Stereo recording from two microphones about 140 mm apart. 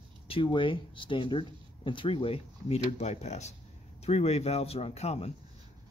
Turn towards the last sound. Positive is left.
turn(degrees=50)  # may be behind; listen again after turning